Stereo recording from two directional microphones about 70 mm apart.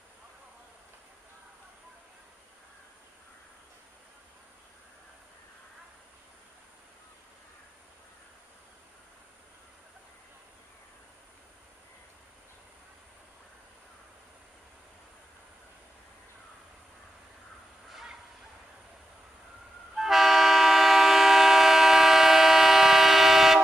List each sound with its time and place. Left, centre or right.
20.0 s train: centre